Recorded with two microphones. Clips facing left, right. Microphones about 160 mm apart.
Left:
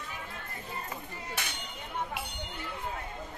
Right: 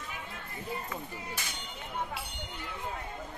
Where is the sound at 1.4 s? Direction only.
65° left (ahead or behind).